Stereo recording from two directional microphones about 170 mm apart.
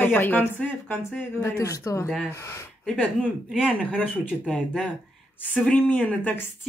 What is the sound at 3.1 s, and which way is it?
A woman's voice, 5° right (ahead or behind).